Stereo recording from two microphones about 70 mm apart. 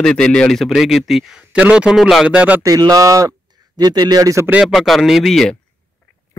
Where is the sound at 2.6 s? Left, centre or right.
Right.